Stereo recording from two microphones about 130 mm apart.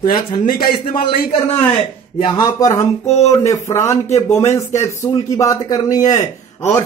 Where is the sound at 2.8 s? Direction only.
60° left (ahead or behind).